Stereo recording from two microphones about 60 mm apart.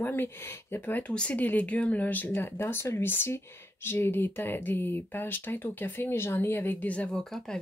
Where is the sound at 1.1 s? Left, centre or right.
Centre.